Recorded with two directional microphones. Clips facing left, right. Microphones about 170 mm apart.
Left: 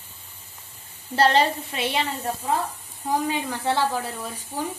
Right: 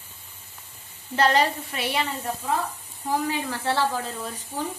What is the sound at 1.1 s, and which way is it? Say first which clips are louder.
Speech: left 2 dB; 30° left (ahead or behind).